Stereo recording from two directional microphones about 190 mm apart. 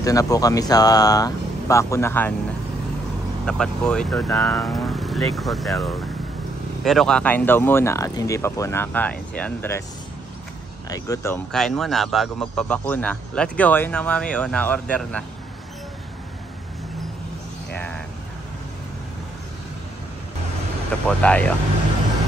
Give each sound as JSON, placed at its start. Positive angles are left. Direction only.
{"t": 0.0, "sound": "speech", "side_deg": 20}
{"t": 3.4, "sound": "speech", "side_deg": 5}
{"t": 10.9, "sound": "speech", "side_deg": 15}
{"t": 11.5, "sound": "speech", "side_deg": 0}
{"t": 21.2, "sound": "speech", "side_deg": 5}